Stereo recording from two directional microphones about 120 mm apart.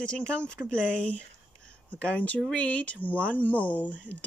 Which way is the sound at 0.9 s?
10° left (ahead or behind).